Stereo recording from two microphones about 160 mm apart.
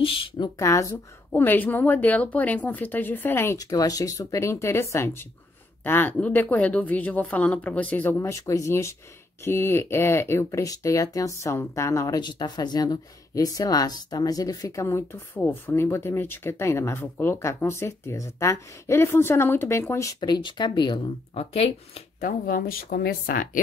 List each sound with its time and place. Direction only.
0.0 s speech: 35° left (ahead or behind)
0.6 s speech: 20° left (ahead or behind); by 22.0 s 40° left (ahead or behind)
22.2 s speech: 65° left (ahead or behind)